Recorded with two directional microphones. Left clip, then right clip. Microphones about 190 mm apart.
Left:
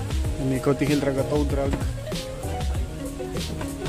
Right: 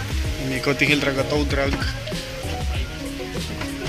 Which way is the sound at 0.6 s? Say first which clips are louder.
Right 5 dB; 25° left (ahead or behind).